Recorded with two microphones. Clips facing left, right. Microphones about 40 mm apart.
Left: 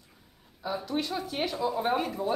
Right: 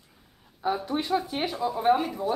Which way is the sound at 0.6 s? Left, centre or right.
Right.